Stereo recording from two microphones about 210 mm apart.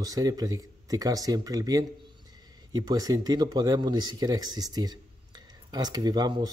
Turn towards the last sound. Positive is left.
turn(degrees=-20)  # may be behind; listen again after turning